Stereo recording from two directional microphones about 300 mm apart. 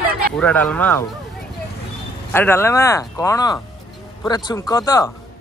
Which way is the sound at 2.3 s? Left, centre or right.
Centre.